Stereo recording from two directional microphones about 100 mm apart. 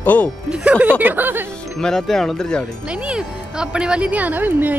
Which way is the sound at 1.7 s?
5° left (ahead or behind).